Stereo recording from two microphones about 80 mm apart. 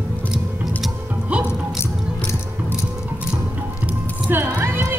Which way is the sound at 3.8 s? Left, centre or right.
Right.